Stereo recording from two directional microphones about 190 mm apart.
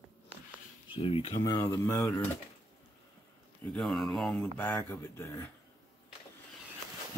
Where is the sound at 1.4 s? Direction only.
15° left (ahead or behind).